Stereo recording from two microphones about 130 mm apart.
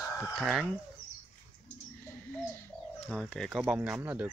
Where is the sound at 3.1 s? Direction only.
Centre (ahead or behind).